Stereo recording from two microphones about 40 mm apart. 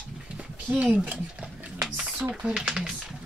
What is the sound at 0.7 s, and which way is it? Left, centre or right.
Speech, right.